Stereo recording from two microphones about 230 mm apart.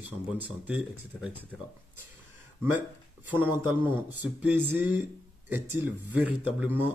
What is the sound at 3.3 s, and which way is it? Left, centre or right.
Speech, centre.